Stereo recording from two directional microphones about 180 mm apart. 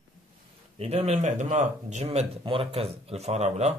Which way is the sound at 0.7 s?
35° right (ahead or behind).